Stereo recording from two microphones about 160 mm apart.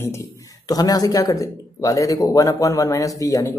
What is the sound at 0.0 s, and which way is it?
Speech, 20° left (ahead or behind).